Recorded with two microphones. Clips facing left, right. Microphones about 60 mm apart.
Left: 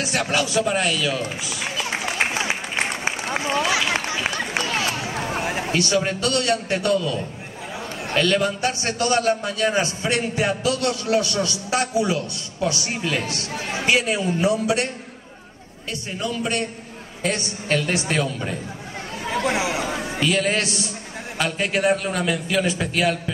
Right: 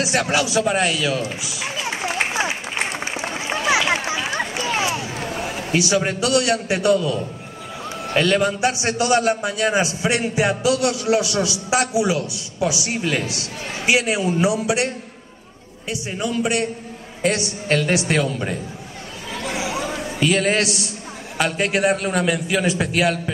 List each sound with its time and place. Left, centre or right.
0.3 s a man's voice: centre
4.6 s a sound: centre
5.3 s a sound: left
5.7 s a man's voice: centre
15.9 s a man's voice: centre
19.2 s chatter: left
20.2 s a man's voice: centre